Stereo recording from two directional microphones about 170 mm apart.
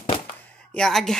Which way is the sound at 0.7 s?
5° left (ahead or behind).